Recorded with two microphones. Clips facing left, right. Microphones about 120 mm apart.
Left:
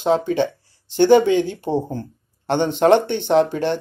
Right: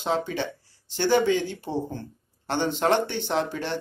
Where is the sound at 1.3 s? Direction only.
20° left (ahead or behind).